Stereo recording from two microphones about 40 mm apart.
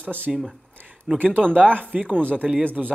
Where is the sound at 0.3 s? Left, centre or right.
Centre.